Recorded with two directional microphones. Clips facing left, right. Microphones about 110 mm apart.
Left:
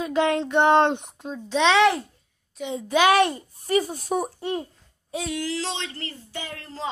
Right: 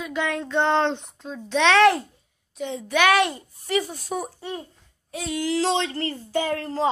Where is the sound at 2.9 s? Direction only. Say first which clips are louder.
Left 1 dB; 30° left (ahead or behind).